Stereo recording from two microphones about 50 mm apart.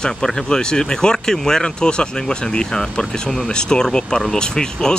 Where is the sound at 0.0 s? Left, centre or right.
Centre.